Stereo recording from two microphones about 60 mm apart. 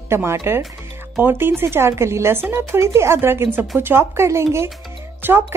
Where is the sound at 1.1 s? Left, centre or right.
Right.